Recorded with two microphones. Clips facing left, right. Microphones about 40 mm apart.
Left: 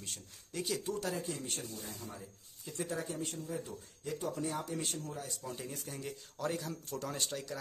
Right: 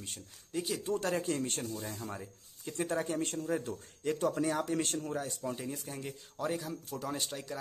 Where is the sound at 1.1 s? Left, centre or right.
Right.